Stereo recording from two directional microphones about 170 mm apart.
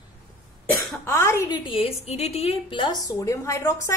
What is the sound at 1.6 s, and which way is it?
A woman's voice, 35° left (ahead or behind).